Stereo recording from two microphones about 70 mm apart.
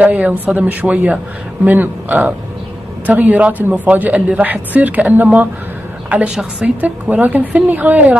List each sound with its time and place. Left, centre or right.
0.0 s a woman's voice: right